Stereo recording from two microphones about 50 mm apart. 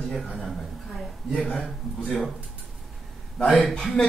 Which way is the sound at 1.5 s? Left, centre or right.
Centre.